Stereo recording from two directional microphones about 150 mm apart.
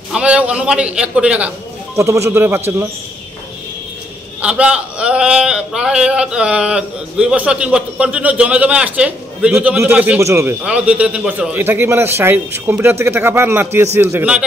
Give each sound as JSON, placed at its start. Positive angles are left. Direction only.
{"t": 0.1, "sound": "a man's voice", "side_deg": -5}
{"t": 2.0, "sound": "a man's voice", "side_deg": -20}
{"t": 4.4, "sound": "a man's voice", "side_deg": -5}
{"t": 10.6, "sound": "a man's voice", "side_deg": -5}